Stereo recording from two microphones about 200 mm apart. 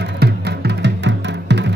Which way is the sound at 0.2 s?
55° right (ahead or behind).